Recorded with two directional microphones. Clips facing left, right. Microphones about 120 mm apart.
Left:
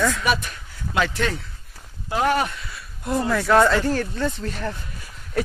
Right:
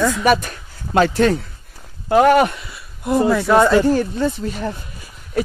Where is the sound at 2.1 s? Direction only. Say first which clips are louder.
Right 9 dB; 55° right (ahead or behind).